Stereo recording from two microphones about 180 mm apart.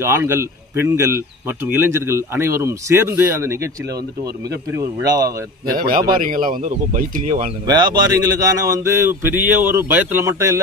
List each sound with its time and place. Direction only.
0.0 s speech: 15° right (ahead or behind)
5.7 s speech: 55° right (ahead or behind)
7.6 s speech: 25° right (ahead or behind)